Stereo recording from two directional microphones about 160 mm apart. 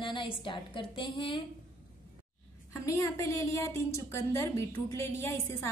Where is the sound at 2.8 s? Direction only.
20° left (ahead or behind).